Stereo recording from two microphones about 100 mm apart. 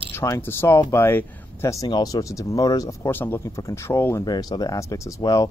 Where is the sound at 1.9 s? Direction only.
40° left (ahead or behind).